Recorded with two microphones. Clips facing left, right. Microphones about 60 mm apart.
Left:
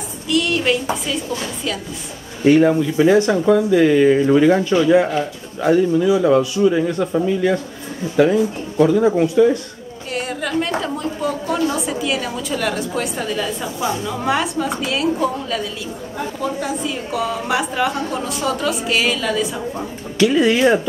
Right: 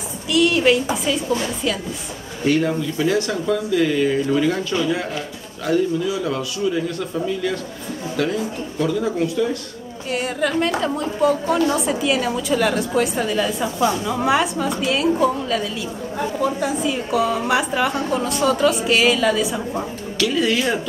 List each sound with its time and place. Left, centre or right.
0.3 s a woman's voice: centre
2.4 s speech: centre
10.1 s a woman's voice: centre
20.2 s speech: left